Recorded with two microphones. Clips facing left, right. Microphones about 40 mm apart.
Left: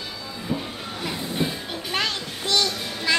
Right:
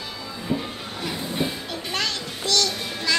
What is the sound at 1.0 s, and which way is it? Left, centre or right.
Train, centre.